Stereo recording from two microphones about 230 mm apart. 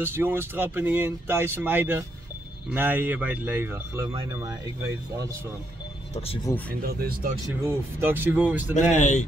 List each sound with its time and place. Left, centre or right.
0.0 s speech: centre
6.8 s speech: right
7.4 s speech: centre
8.7 s speech: left